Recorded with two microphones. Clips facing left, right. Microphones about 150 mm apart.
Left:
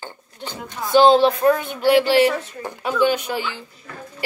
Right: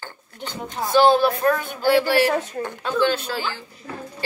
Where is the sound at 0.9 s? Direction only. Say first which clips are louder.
Left 3 dB; 20° left (ahead or behind).